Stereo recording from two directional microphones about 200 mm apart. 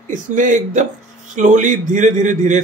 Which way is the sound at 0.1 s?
40° right (ahead or behind).